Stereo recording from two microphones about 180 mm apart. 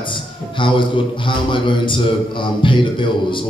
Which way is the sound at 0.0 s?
25° left (ahead or behind).